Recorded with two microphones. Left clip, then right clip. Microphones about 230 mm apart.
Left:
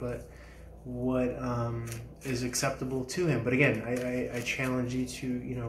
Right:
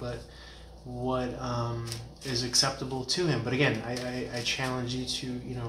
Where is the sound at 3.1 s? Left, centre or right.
Centre.